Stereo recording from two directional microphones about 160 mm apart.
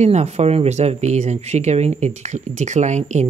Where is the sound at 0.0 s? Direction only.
45° right (ahead or behind).